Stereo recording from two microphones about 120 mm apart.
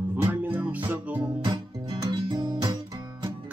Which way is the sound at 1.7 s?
40° right (ahead or behind).